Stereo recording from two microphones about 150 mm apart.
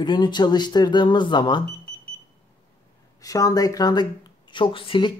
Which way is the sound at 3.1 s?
25° left (ahead or behind).